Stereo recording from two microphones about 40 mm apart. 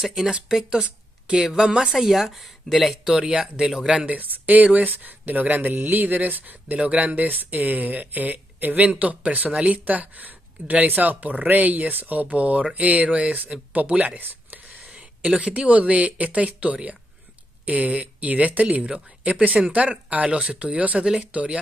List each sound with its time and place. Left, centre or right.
0.0 s speech: centre
1.9 s speech: centre
3.1 s speech: centre
4.0 s speech: right
8.8 s speech: right
9.9 s speech: right
14.2 s a sound: right
15.3 s speech: right
21.0 s speech: centre